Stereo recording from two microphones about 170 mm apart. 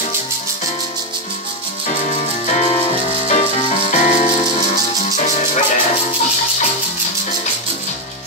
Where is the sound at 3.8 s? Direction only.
45° left (ahead or behind).